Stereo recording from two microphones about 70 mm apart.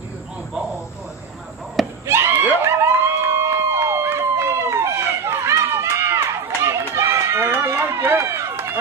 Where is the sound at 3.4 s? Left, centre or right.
Right.